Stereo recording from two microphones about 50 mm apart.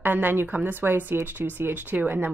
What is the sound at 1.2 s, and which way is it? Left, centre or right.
Speech, right.